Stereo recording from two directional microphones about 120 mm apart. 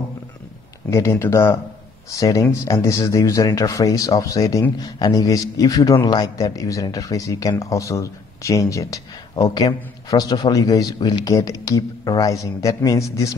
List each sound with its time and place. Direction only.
0.8 s a man's voice: 25° left (ahead or behind)